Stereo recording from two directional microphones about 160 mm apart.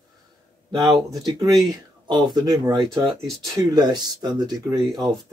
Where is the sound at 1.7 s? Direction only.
25° right (ahead or behind).